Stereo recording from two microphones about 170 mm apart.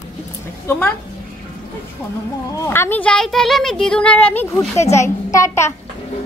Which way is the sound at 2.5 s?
15° left (ahead or behind).